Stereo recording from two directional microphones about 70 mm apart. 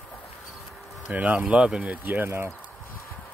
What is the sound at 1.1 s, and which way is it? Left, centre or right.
Speech, centre.